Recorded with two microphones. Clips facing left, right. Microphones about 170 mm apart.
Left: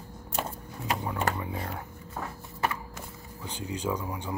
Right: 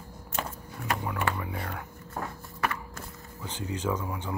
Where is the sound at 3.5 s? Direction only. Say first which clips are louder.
Right 1 dB; 15° left (ahead or behind).